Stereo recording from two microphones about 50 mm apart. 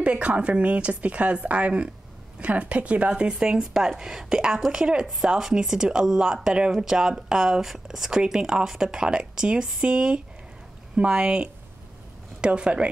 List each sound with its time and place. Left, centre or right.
0.0 s speech: right
3.5 s speech: centre